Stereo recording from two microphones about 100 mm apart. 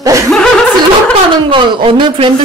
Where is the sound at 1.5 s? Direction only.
60° right (ahead or behind).